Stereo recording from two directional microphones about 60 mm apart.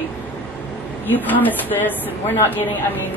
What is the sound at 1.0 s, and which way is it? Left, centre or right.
Speech, left.